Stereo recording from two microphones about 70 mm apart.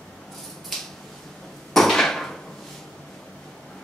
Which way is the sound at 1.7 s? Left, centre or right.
Centre.